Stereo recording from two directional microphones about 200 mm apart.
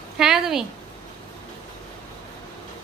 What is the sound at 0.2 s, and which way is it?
Speech, centre (ahead or behind).